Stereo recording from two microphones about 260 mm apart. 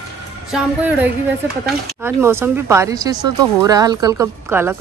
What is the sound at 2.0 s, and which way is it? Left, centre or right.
Speech, centre.